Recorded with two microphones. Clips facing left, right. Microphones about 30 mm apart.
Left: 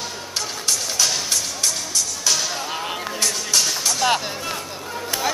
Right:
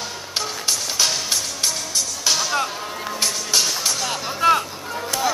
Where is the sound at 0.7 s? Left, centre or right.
Centre.